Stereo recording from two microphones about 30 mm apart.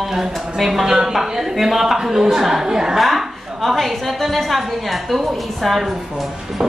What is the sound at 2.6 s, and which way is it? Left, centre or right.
Speech, right.